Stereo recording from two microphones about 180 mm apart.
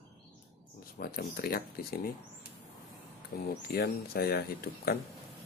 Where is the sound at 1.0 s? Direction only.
60° left (ahead or behind).